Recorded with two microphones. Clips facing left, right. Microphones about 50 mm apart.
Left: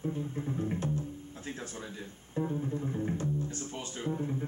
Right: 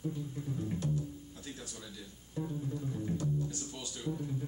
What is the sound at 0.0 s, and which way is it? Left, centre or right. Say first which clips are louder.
Speech: left 4 dB; left.